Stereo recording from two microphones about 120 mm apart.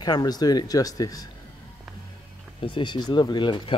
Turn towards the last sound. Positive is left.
turn(degrees=40)  # may be behind; listen again after turning